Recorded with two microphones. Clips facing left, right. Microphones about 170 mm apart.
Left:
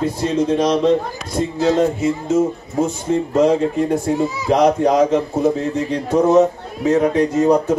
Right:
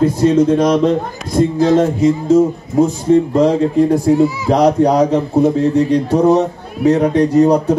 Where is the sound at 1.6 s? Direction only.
45° right (ahead or behind).